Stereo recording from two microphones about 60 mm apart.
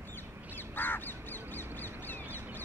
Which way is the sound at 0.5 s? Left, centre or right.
Left.